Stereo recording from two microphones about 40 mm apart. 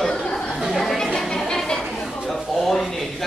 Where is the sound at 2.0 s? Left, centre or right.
Centre.